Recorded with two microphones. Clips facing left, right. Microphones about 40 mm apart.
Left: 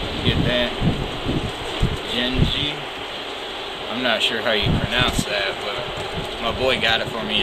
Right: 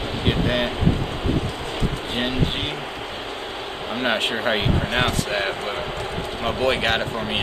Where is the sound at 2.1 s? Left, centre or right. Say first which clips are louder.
Left 2 dB; left.